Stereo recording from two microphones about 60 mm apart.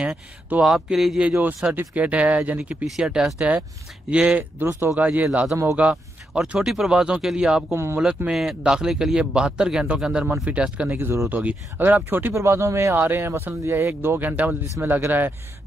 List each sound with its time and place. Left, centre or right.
0.6 s speech: centre
1.6 s speech: right
2.8 s speech: centre
3.3 s speech: right
4.6 s speech: right
4.9 s speech: right
7.7 s speech: right
8.3 s speech: centre; by 12.4 s right
12.4 s speech: right
13.0 s speech: right
14.2 s speech: right